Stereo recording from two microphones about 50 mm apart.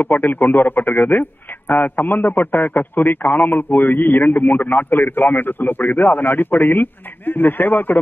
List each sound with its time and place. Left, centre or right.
0.0 s a man's voice: left